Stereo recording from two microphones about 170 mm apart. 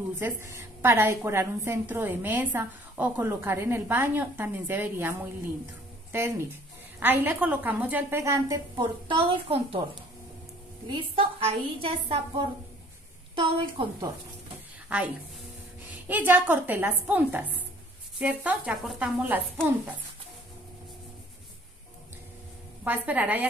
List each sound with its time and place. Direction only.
0.2 s a woman's voice: 15° right (ahead or behind)
6.1 s a woman's voice: 15° right (ahead or behind); by 9.8 s 30° right (ahead or behind)
10.9 s a woman's voice: 30° right (ahead or behind)
16.1 s a woman's voice: 10° right (ahead or behind)
22.8 s a woman's voice: 10° right (ahead or behind)